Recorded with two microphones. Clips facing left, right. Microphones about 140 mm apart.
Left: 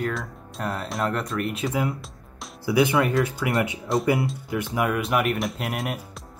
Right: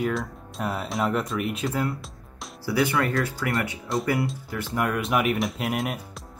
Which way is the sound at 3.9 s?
Centre (ahead or behind).